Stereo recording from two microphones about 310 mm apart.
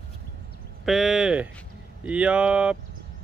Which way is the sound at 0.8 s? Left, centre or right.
Centre.